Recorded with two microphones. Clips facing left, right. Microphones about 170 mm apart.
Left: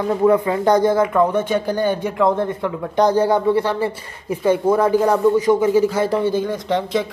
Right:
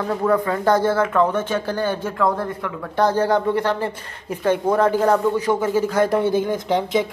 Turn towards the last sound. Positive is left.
turn(degrees=-5)  # may be behind; listen again after turning